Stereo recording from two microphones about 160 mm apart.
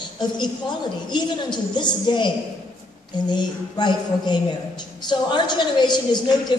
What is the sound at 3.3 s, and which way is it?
A woman's voice, 25° left (ahead or behind).